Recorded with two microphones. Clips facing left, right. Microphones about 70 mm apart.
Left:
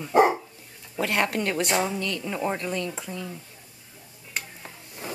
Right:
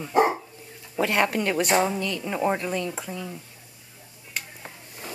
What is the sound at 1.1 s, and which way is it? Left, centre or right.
Speech, centre.